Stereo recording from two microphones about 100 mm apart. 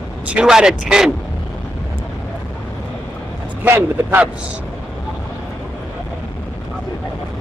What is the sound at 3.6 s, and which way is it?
Speech, 20° right (ahead or behind).